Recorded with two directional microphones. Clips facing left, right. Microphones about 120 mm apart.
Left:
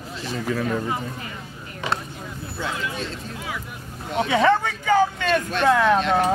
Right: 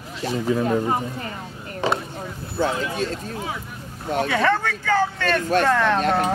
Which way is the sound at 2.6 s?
40° right (ahead or behind).